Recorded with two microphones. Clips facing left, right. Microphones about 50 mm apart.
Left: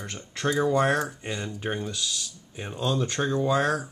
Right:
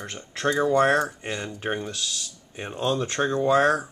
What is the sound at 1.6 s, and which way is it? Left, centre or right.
Speech, centre.